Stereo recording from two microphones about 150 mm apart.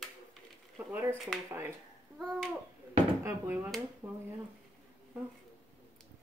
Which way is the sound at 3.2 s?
15° right (ahead or behind).